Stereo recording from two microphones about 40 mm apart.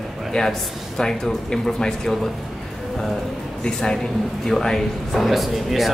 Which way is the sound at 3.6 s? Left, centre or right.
Centre.